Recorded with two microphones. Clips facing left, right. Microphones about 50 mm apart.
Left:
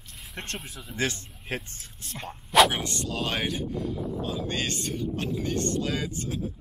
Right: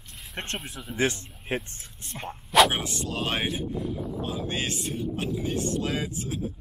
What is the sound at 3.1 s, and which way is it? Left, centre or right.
Speech, right.